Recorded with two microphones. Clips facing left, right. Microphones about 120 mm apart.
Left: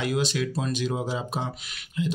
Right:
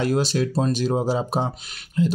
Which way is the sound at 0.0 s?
35° right (ahead or behind).